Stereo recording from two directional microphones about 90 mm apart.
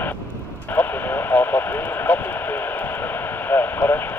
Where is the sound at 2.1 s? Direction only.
15° left (ahead or behind).